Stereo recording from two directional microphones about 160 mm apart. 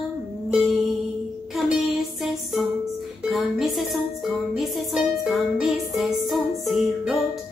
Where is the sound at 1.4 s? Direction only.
Centre (ahead or behind).